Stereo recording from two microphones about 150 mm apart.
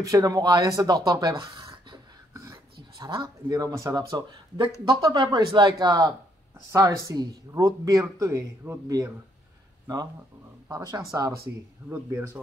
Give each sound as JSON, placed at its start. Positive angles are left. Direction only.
{"t": 0.0, "sound": "speech", "side_deg": -25}
{"t": 10.7, "sound": "speech", "side_deg": -25}